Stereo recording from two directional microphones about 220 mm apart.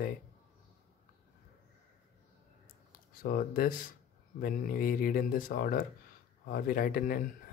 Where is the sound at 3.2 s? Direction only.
40° left (ahead or behind).